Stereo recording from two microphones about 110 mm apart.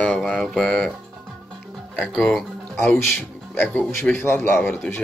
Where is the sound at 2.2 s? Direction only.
10° left (ahead or behind).